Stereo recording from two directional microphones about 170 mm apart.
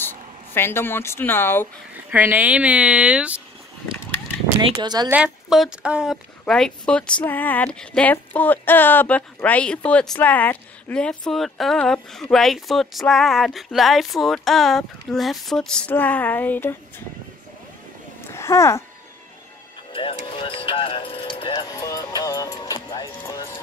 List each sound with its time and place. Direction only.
0.6 s speech: 15° left (ahead or behind)
2.0 s speech: 10° right (ahead or behind)
4.6 s speech: 25° right (ahead or behind)
5.1 s speech: 5° right (ahead or behind); by 16.7 s 10° left (ahead or behind)
18.3 s a sound: 15° left (ahead or behind)
19.9 s speech: 30° left (ahead or behind)